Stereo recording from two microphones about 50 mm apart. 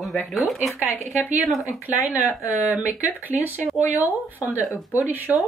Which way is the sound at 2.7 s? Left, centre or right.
Right.